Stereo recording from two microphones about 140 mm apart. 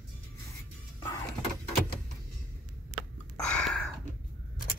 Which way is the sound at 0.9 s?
30° left (ahead or behind).